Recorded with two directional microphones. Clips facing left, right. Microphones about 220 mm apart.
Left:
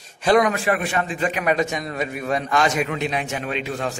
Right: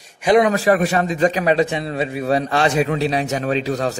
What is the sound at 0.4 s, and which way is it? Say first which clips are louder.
A man's voice: right 5 dB; 35° right (ahead or behind).